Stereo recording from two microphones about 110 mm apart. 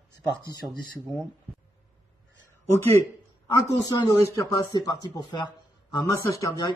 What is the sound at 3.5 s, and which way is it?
A man's voice, 35° left (ahead or behind).